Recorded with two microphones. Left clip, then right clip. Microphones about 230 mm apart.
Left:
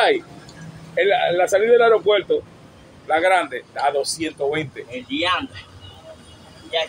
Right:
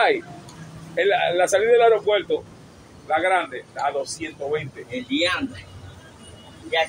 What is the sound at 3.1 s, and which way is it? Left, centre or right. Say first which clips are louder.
Speech: left 3 dB; left.